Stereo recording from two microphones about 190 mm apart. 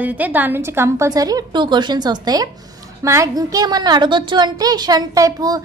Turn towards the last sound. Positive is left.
turn(degrees=-20)  # may be behind; listen again after turning